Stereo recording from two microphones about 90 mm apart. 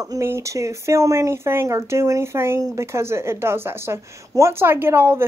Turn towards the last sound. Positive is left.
turn(degrees=-30)  # may be behind; listen again after turning